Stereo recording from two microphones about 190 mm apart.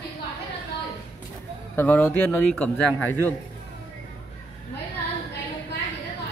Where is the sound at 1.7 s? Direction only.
10° left (ahead or behind).